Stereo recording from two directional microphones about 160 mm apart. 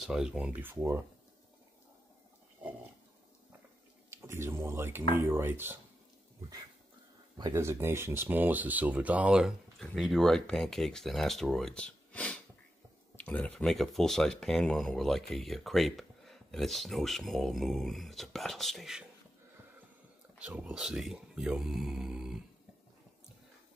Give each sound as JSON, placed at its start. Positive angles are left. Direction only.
{"t": 0.0, "sound": "speech", "side_deg": -5}
{"t": 4.1, "sound": "speech", "side_deg": -15}
{"t": 7.3, "sound": "speech", "side_deg": -20}
{"t": 20.3, "sound": "speech", "side_deg": -10}